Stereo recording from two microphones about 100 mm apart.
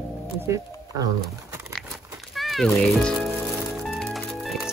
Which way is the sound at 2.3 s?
Centre (ahead or behind).